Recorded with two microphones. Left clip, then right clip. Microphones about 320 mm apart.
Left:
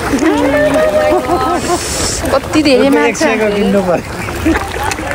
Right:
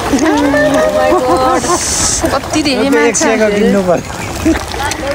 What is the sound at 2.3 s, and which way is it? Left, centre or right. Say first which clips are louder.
Speech: left 7 dB; centre.